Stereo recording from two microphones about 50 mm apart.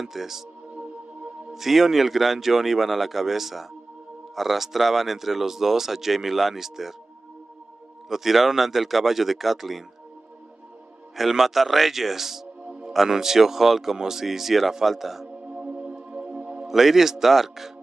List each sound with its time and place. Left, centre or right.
0.0 s speech: centre
1.5 s speech: centre
8.1 s speech: centre
11.1 s speech: centre
15.2 s music: right
16.6 s speech: centre